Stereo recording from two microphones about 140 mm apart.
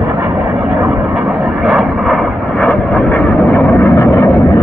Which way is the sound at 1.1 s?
Centre (ahead or behind).